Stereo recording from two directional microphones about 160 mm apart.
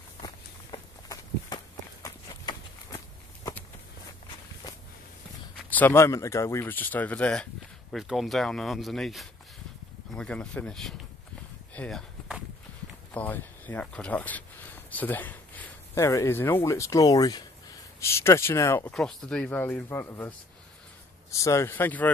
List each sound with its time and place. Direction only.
0.2 s walk: 25° left (ahead or behind)
2.0 s run: 25° left (ahead or behind)
5.7 s speech: 10° left (ahead or behind)
13.1 s speech: 10° left (ahead or behind)